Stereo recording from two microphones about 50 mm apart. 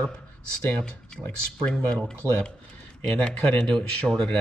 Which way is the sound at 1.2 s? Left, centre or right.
Centre.